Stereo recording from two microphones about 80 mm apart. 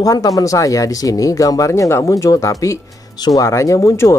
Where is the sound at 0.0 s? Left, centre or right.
Left.